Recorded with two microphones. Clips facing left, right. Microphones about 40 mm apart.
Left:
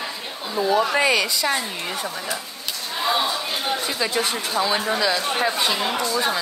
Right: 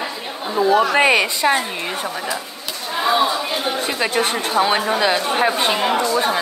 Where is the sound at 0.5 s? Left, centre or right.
Right.